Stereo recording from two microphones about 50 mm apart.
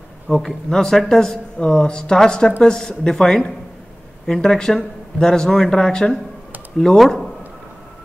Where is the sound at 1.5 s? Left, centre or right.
Centre.